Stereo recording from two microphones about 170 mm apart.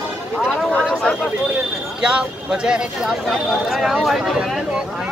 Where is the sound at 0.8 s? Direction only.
Centre (ahead or behind).